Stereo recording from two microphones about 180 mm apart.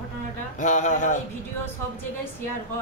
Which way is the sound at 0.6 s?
40° left (ahead or behind).